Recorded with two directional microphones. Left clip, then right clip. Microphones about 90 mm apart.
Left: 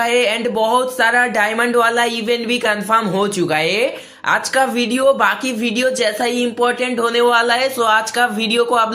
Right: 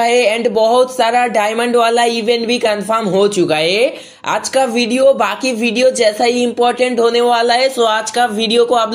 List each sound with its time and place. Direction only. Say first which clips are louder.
0.0 s speech: right 4 dB; 25° right (ahead or behind)